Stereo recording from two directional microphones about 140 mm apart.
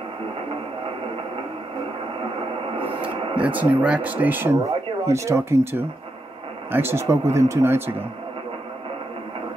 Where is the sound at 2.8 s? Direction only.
40° right (ahead or behind).